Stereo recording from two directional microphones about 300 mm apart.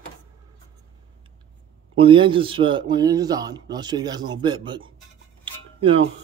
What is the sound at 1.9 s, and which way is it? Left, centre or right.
A man's voice, centre.